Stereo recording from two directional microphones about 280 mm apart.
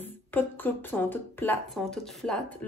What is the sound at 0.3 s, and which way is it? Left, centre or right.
Speech, centre.